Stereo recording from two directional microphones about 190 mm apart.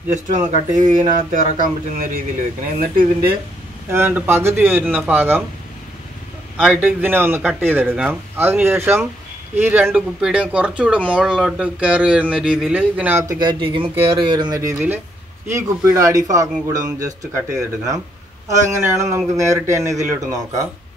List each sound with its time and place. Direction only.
0.1 s speech: 40° right (ahead or behind)
2.8 s speech: 45° right (ahead or behind)
3.9 s speech: 10° right (ahead or behind)
6.6 s speech: 5° right (ahead or behind)
13.4 s speech: 25° right (ahead or behind)